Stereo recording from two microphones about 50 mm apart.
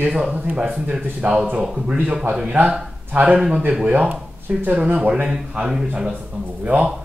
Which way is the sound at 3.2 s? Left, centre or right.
Right.